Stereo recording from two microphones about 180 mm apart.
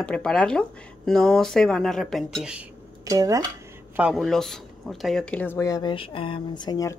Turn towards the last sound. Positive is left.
turn(degrees=20)  # may be behind; listen again after turning